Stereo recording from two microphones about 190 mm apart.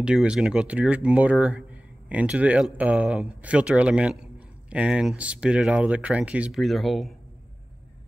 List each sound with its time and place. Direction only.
0.0 s speech: 5° right (ahead or behind)